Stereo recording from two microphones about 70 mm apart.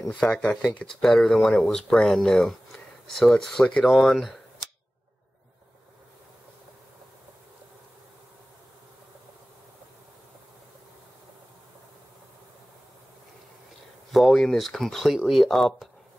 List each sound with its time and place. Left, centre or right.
0.2 s speech: centre
14.1 s speech: centre